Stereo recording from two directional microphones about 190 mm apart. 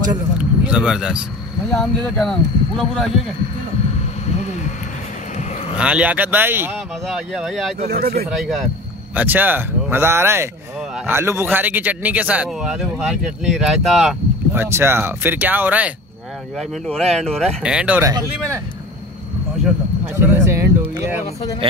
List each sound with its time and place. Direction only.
0.4 s speech: 5° right (ahead or behind)
5.8 s speech: 5° right (ahead or behind)
7.1 s speech: centre (ahead or behind)
7.9 s speech: 50° right (ahead or behind)
8.3 s speech: centre (ahead or behind)
16.5 s speech: 5° left (ahead or behind)
20.2 s a sound: 15° right (ahead or behind)